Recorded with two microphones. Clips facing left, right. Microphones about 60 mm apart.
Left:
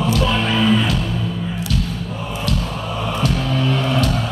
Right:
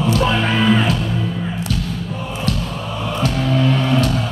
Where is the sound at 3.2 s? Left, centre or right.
Right.